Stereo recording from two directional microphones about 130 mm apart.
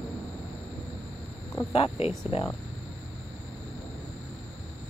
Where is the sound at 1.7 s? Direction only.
50° left (ahead or behind).